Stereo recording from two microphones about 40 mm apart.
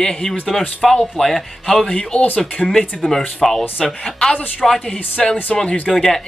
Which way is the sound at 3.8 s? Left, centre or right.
Centre.